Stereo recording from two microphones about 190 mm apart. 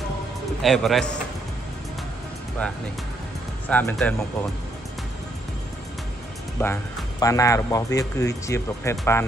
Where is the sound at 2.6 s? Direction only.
5° left (ahead or behind).